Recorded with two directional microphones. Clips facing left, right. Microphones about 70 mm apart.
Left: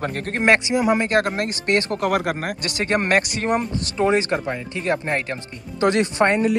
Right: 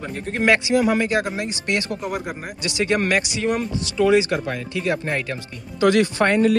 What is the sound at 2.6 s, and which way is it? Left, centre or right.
Speech, left.